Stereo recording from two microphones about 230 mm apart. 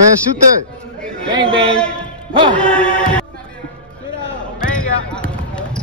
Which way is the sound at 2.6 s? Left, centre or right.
Centre.